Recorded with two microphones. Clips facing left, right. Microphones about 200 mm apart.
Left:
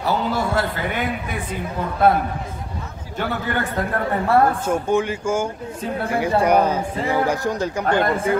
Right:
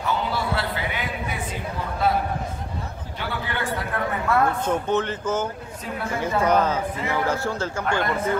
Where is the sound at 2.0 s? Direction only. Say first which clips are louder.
Left 5 dB; 55° left (ahead or behind); by 4.5 s 35° left (ahead or behind).